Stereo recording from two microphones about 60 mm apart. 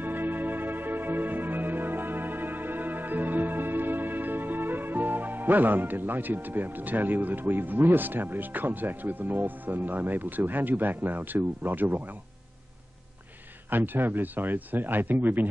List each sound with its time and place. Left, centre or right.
0.0 s music: right
13.7 s speech: right